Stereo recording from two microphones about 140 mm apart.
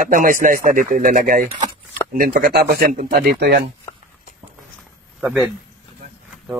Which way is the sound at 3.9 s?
20° left (ahead or behind).